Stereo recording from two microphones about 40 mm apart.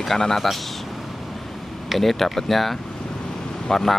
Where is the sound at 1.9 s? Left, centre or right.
Centre.